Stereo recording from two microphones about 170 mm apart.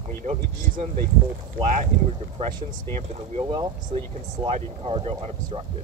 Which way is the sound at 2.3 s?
35° right (ahead or behind).